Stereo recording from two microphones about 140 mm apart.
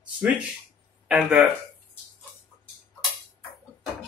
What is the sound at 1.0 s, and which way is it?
Speech, 5° right (ahead or behind).